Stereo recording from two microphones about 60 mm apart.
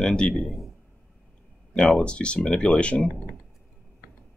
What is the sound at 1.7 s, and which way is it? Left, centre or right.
Speech, centre.